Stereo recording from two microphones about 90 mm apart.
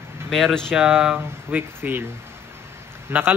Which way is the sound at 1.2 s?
20° right (ahead or behind).